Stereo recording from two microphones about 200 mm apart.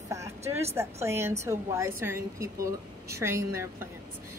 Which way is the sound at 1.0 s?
15° right (ahead or behind).